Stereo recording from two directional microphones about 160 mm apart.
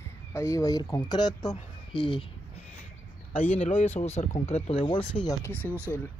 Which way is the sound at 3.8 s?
45° left (ahead or behind).